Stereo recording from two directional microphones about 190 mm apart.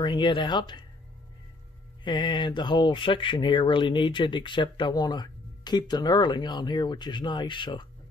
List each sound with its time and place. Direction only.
0.0 s speech: 25° left (ahead or behind)
2.0 s speech: 25° left (ahead or behind)